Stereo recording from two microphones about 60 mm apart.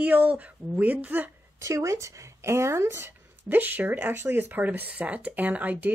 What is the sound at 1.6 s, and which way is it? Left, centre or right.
A woman's voice, right.